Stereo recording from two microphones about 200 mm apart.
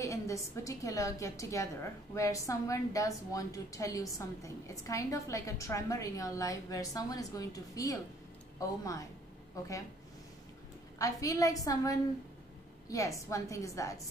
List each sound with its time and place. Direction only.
0.0 s a woman's voice: 15° left (ahead or behind)
11.0 s a woman's voice: 15° left (ahead or behind)